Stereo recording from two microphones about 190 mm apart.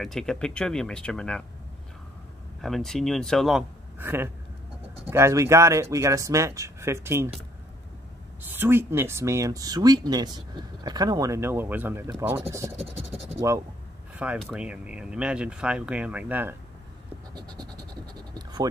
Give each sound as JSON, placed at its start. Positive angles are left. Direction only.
{"t": 0.0, "sound": "speech", "side_deg": 0}
{"t": 2.6, "sound": "speech", "side_deg": 0}
{"t": 4.0, "sound": "speech", "side_deg": -10}
{"t": 8.5, "sound": "speech", "side_deg": -10}
{"t": 14.1, "sound": "speech", "side_deg": -5}
{"t": 17.3, "sound": "goat", "side_deg": -20}
{"t": 18.3, "sound": "scratch", "side_deg": -20}